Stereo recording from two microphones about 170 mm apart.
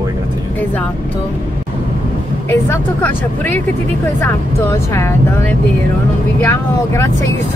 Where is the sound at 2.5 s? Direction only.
15° left (ahead or behind).